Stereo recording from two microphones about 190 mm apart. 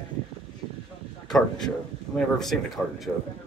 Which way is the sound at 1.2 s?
Centre (ahead or behind).